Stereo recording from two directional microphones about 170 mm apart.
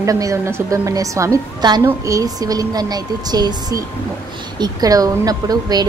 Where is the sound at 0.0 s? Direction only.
20° right (ahead or behind).